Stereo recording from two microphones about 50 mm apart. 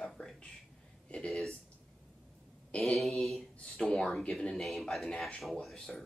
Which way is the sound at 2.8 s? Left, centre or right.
Centre.